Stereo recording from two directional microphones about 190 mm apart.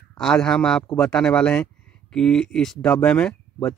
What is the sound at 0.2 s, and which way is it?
Speech, 5° left (ahead or behind).